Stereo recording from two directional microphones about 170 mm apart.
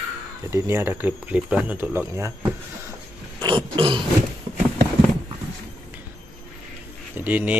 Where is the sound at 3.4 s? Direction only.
30° right (ahead or behind).